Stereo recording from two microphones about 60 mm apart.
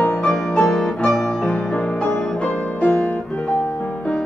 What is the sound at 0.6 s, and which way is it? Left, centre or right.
Music, centre.